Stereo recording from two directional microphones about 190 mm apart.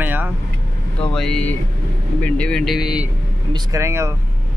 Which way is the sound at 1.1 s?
5° left (ahead or behind).